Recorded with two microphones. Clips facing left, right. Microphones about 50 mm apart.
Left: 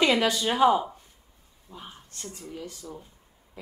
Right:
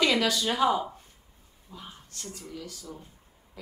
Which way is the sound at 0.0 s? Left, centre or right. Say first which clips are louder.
Left 2 dB; left.